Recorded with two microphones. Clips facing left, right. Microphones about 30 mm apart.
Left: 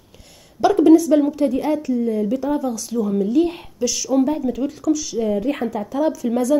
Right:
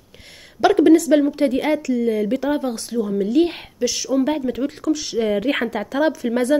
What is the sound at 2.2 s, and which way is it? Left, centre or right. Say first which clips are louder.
A woman's voice: even; right.